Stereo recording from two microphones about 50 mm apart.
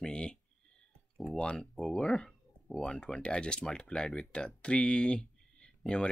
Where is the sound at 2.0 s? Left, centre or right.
Centre.